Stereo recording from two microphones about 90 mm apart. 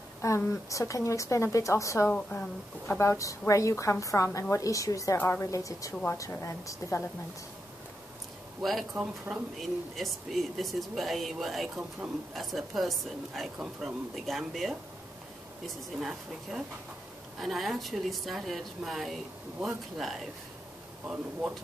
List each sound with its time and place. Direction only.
0.2 s a sound: 40° left (ahead or behind)
0.7 s a woman's voice: 35° left (ahead or behind)
5.1 s a woman's voice: 25° left (ahead or behind)
5.5 s a woman's voice: 40° left (ahead or behind)
8.9 s speech: 20° right (ahead or behind)
9.3 s speech: centre (ahead or behind)
21.1 s speech: 15° right (ahead or behind)